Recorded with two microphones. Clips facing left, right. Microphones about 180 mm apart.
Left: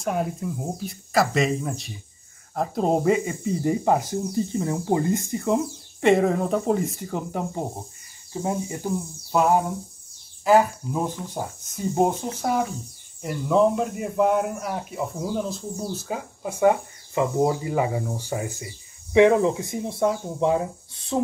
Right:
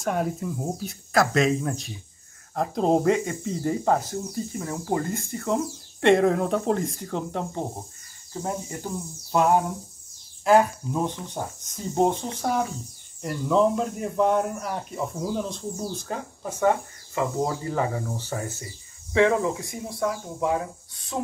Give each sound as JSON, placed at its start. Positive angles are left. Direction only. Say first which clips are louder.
{"t": 0.0, "sound": "a man's voice", "louder": "even", "side_deg": 0}
{"t": 5.9, "sound": "a man's voice", "louder": "even", "side_deg": 0}
{"t": 9.3, "sound": "a man's voice", "louder": "left 1 dB", "side_deg": 0}